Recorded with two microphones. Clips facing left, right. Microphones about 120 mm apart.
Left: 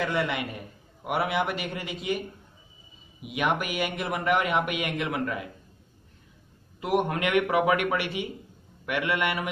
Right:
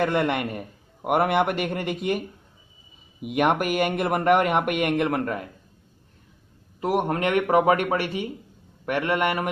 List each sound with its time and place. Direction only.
0.0 s speech: 55° right (ahead or behind)
6.8 s a man's voice: 40° right (ahead or behind)